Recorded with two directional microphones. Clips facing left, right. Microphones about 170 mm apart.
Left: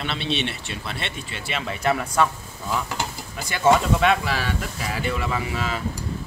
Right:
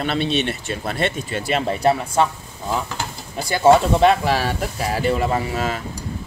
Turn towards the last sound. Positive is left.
turn(degrees=-45)  # may be behind; listen again after turning